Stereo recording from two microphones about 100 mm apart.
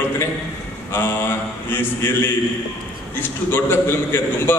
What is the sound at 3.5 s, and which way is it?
A man's voice, 20° left (ahead or behind).